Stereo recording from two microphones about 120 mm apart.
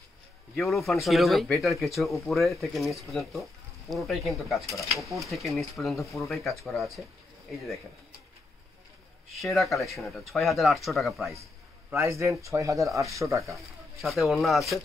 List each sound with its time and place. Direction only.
0.6 s speech: centre (ahead or behind)
9.4 s speech: centre (ahead or behind)
11.9 s speech: 25° right (ahead or behind)
14.0 s speech: centre (ahead or behind)